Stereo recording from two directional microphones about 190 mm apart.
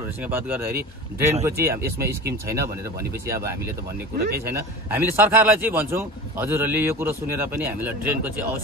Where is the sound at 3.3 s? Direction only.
15° right (ahead or behind).